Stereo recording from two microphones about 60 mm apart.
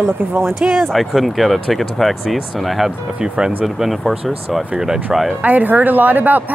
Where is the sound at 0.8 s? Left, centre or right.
Centre.